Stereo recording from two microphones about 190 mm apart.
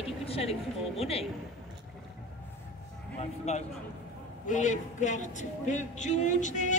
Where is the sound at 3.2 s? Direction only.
35° left (ahead or behind).